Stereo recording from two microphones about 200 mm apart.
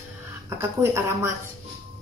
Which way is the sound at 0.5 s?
15° right (ahead or behind).